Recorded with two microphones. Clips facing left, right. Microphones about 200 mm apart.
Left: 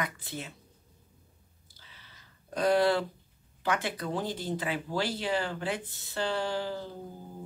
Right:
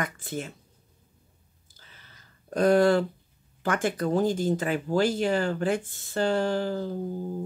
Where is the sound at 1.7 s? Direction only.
45° right (ahead or behind).